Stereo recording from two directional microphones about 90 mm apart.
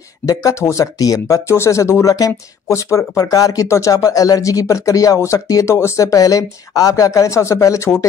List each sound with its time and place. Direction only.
0.3 s speech: 35° left (ahead or behind)